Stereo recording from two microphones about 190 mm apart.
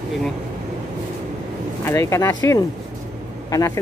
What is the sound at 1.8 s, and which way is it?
Speech, 15° left (ahead or behind).